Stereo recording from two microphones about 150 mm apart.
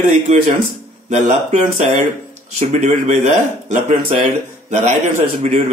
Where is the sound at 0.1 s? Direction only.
50° right (ahead or behind).